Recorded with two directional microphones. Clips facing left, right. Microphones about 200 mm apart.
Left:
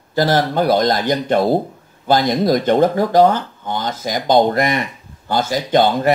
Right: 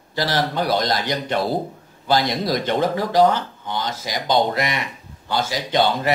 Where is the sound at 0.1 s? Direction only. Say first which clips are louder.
Left 6 dB; 50° left (ahead or behind).